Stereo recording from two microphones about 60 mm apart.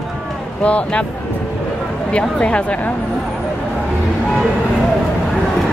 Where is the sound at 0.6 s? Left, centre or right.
Left.